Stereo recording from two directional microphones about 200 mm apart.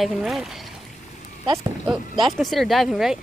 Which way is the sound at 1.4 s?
15° right (ahead or behind).